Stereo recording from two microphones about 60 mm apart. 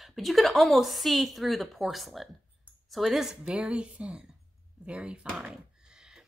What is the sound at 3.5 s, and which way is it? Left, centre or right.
Speech, centre.